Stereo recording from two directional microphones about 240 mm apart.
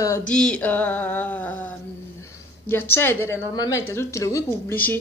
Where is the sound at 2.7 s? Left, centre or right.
Centre.